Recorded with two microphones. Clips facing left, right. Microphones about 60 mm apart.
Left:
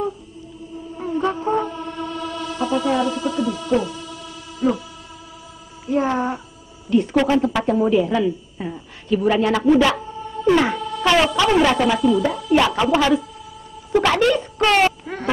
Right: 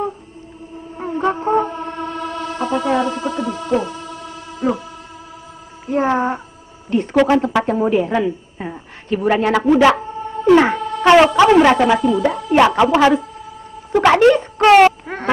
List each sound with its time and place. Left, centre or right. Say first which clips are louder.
0.9 s music: right 3 dB; right
5.9 s a woman's voice: right 3 dB; right
9.9 s a sound: right 4 dB; right
10.6 s speech: right 5 dB; right
11.5 s a sound: right 5 dB; right
14.8 s quack: right 7 dB; right